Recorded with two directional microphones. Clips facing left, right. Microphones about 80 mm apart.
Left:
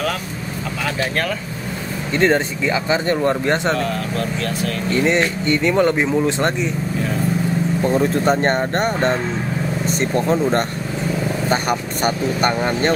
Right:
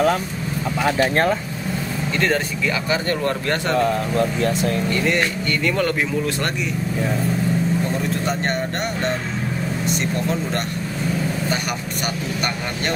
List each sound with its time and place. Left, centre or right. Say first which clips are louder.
0.8 s speech: right 4 dB; right
2.1 s speech: left 5 dB; left
3.7 s speech: right 3 dB; right
4.9 s speech: left 3 dB; left
7.9 s speech: left 6 dB; left
12.0 s speech: left 7 dB; left